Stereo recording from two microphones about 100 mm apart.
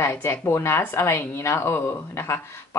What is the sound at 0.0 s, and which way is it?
A woman's voice, 25° left (ahead or behind).